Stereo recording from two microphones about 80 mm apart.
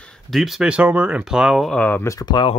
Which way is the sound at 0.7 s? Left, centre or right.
Centre.